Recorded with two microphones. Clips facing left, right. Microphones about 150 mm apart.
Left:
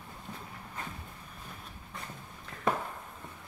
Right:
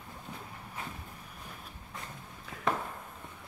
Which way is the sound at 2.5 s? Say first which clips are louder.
Right 2 dB; 5° right (ahead or behind).